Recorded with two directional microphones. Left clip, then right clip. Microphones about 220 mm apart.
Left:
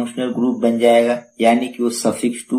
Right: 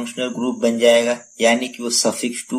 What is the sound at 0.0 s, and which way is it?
Speech, 15° right (ahead or behind).